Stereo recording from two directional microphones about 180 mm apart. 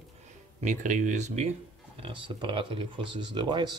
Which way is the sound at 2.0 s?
25° right (ahead or behind).